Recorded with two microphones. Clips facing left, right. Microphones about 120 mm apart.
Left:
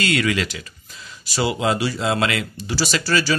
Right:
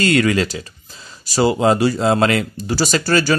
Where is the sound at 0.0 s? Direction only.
40° right (ahead or behind).